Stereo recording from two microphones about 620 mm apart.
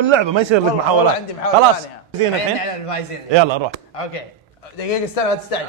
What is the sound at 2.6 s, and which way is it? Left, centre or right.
Speech, left.